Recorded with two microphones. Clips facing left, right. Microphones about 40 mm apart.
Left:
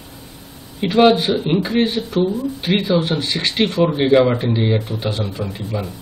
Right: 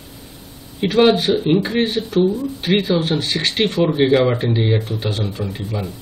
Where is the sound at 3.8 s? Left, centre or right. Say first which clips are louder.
Left 1 dB; centre.